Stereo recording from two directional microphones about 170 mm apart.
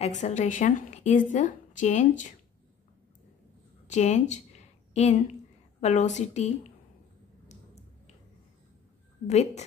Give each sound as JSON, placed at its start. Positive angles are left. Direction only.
{"t": 0.0, "sound": "a woman's voice", "side_deg": 45}
{"t": 3.8, "sound": "a sound", "side_deg": 45}
{"t": 5.8, "sound": "a woman's voice", "side_deg": 40}
{"t": 9.3, "sound": "a woman's voice", "side_deg": 40}